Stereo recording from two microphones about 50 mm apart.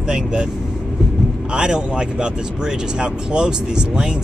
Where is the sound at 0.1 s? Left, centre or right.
Centre.